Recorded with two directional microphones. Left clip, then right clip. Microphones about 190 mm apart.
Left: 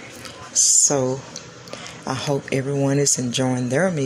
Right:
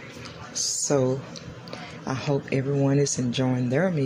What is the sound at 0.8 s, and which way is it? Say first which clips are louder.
Speech: left 3 dB; 5° right (ahead or behind).